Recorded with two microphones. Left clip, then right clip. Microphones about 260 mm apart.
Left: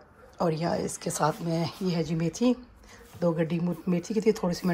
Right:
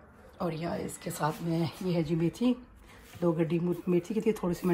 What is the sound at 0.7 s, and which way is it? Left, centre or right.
Speech, left.